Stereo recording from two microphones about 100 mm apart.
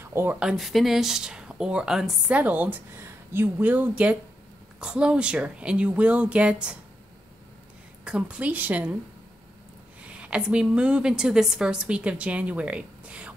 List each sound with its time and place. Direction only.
0.0 s speech: 25° right (ahead or behind)
0.4 s speech: 5° right (ahead or behind)
8.0 s speech: 10° right (ahead or behind)
10.0 s speech: 10° right (ahead or behind)